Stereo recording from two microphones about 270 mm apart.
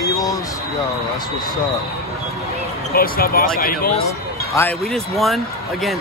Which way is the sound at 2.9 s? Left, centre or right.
Left.